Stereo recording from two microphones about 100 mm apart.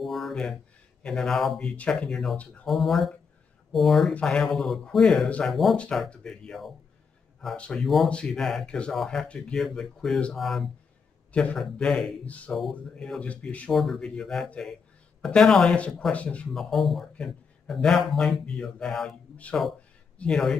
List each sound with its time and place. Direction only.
0.0 s speech: centre (ahead or behind)
2.6 s speech: centre (ahead or behind)
12.3 s speech: 15° left (ahead or behind)
13.7 s speech: 5° left (ahead or behind)
16.5 s speech: centre (ahead or behind)
20.2 s speech: 5° left (ahead or behind)